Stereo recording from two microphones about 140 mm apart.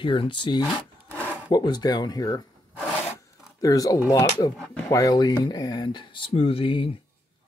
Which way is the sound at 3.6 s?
25° left (ahead or behind).